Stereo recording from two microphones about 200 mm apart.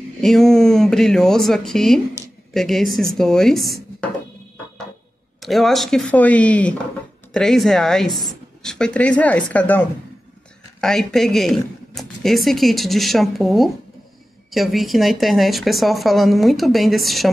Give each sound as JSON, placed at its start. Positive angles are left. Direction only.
{"t": 0.2, "sound": "speech", "side_deg": 0}
{"t": 5.4, "sound": "speech", "side_deg": 0}